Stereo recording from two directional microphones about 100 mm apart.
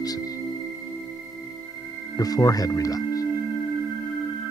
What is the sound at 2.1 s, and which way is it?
Speech, 40° left (ahead or behind).